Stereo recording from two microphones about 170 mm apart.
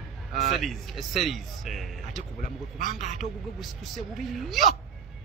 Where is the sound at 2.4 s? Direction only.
50° left (ahead or behind).